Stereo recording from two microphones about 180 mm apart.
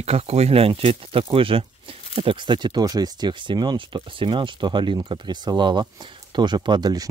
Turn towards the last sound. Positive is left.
turn(degrees=-20)  # may be behind; listen again after turning